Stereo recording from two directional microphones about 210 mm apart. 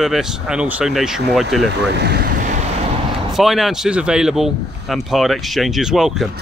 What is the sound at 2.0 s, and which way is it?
Speech, 50° right (ahead or behind).